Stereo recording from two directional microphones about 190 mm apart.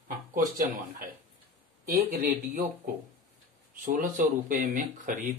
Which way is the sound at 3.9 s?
45° right (ahead or behind).